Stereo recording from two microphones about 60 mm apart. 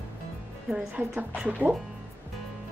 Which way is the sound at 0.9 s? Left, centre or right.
Right.